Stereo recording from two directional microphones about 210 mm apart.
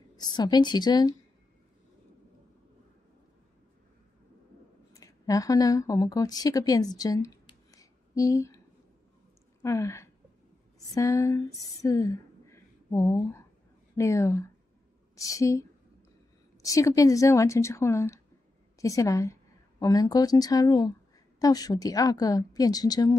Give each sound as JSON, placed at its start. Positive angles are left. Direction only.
{"t": 0.1, "sound": "a woman's voice", "side_deg": 20}
{"t": 4.9, "sound": "a woman's voice", "side_deg": 15}
{"t": 9.6, "sound": "a woman's voice", "side_deg": 15}
{"t": 16.6, "sound": "a woman's voice", "side_deg": 15}